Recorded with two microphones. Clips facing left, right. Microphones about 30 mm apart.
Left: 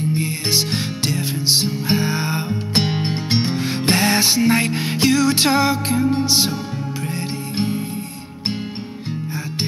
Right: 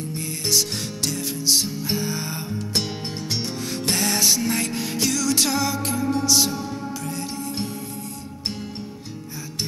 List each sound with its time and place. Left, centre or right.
0.1 s music: left